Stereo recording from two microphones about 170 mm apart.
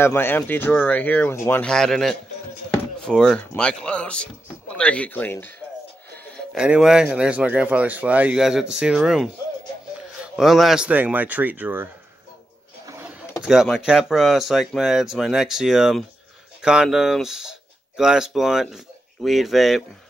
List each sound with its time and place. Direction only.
0.0 s speech: 15° left (ahead or behind)
6.5 s speech: 5° right (ahead or behind)
12.8 s a sound: 10° right (ahead or behind)
13.4 s speech: 5° right (ahead or behind)